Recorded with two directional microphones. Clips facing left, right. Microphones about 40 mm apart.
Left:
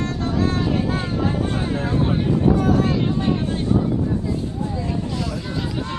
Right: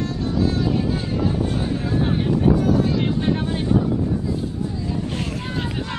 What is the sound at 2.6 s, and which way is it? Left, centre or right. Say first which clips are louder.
Speech: left 1 dB; left.